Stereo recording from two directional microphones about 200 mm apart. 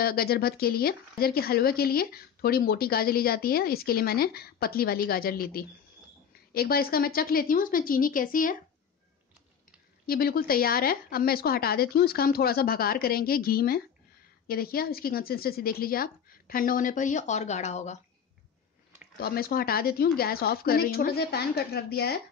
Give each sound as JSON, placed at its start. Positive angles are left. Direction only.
{"t": 0.0, "sound": "speech", "side_deg": 50}
{"t": 10.0, "sound": "speech", "side_deg": 50}
{"t": 19.1, "sound": "speech", "side_deg": 50}